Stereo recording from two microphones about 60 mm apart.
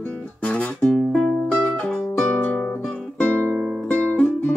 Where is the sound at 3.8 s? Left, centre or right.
Centre.